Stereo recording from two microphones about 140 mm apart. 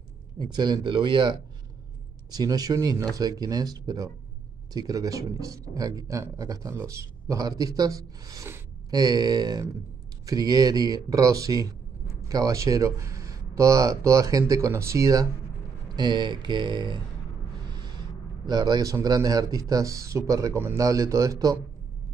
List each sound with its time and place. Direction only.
0.4 s speech: 30° right (ahead or behind)
2.3 s speech: 25° right (ahead or behind)
17.7 s a sound: 30° right (ahead or behind)
18.5 s speech: 30° right (ahead or behind)